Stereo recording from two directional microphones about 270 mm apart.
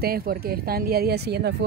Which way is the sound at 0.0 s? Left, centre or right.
Right.